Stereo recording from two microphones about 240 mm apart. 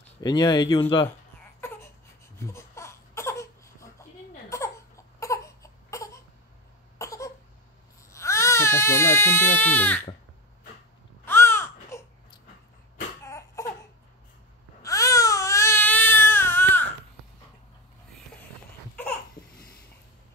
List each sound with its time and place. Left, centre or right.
0.2 s speech: centre
2.3 s crying: centre
4.5 s baby cry: centre
7.0 s cough: centre
8.1 s speech: centre
11.2 s a sound: centre
13.2 s baby cry: centre
14.8 s baby cry: centre
19.4 s babbling: centre